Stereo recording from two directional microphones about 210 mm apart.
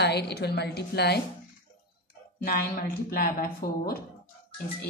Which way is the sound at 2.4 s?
45° left (ahead or behind).